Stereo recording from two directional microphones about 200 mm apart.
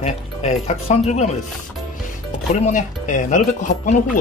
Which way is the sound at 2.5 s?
40° left (ahead or behind).